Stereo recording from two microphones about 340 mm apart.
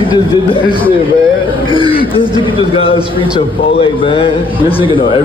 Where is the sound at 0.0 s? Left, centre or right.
Centre.